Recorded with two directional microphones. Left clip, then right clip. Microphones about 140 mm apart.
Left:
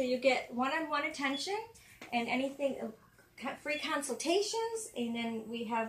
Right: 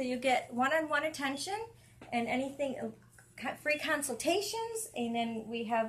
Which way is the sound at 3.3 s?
30° right (ahead or behind).